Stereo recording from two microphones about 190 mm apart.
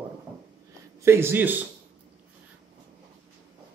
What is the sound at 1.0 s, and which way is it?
Speech, 15° right (ahead or behind).